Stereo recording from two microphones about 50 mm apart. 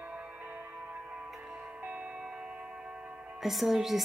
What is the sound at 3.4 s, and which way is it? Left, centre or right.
Music, centre.